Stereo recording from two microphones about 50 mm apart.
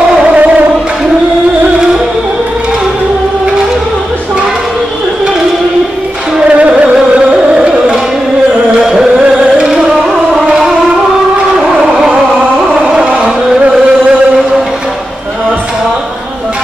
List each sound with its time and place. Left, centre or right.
0.2 s music: right
6.3 s music: right
11.5 s a sound: centre
12.7 s carnatic music: centre